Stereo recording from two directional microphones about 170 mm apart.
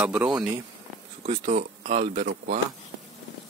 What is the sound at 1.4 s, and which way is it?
Speech, 45° right (ahead or behind).